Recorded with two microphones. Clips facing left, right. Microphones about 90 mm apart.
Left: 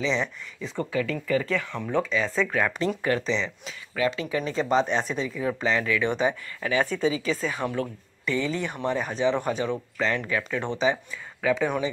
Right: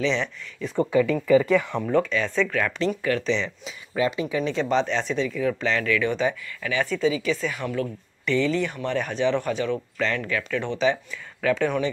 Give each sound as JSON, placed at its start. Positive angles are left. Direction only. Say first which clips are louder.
{"t": 0.0, "sound": "speech", "louder": "right 2 dB", "side_deg": 5}
{"t": 0.7, "sound": "speech", "louder": "right 7 dB", "side_deg": -10}
{"t": 1.9, "sound": "speech", "louder": "even", "side_deg": 5}
{"t": 3.0, "sound": "speech", "louder": "right 1 dB", "side_deg": 35}
{"t": 3.3, "sound": "speech", "louder": "right 2 dB", "side_deg": 0}
{"t": 3.9, "sound": "speech", "louder": "right 2 dB", "side_deg": -25}
{"t": 4.4, "sound": "speech", "louder": "even", "side_deg": 5}
{"t": 5.4, "sound": "speech", "louder": "right 1 dB", "side_deg": 20}
{"t": 6.7, "sound": "speech", "louder": "right 1 dB", "side_deg": 35}
{"t": 8.3, "sound": "speech", "louder": "right 4 dB", "side_deg": 20}